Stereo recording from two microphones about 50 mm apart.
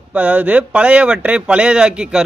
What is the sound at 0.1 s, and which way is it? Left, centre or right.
A man's voice, right.